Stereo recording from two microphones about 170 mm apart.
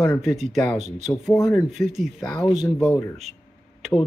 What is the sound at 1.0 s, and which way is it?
Speech, centre (ahead or behind).